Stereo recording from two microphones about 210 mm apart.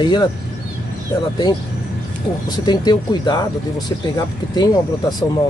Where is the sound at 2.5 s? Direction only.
20° left (ahead or behind).